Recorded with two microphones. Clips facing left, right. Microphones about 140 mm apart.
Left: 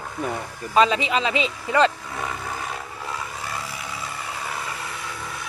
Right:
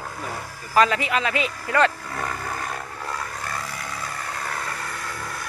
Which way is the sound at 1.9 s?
Centre (ahead or behind).